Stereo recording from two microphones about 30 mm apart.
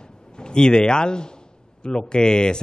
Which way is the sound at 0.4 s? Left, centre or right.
Left.